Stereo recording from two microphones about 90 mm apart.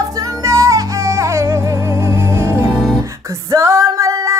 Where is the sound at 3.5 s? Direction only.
35° right (ahead or behind).